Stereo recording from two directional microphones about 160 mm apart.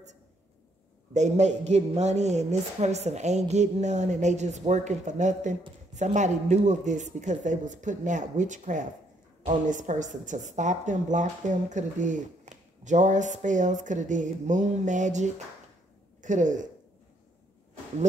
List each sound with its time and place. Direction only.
1.1 s speech: 45° right (ahead or behind)